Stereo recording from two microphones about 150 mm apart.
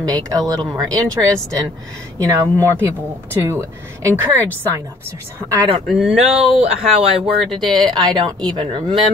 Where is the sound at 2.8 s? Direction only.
20° right (ahead or behind).